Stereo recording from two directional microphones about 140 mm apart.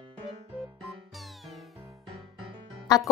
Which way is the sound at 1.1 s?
Centre (ahead or behind).